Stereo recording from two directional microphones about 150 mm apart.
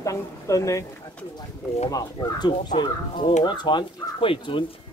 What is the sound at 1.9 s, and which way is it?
Speech, 30° left (ahead or behind).